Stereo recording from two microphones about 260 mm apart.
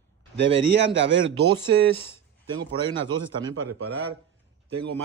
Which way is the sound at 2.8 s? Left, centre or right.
Centre.